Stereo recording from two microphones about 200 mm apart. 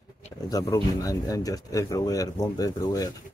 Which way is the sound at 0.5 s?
15° left (ahead or behind).